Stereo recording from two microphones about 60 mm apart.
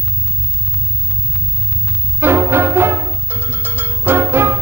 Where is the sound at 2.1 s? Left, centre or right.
Right.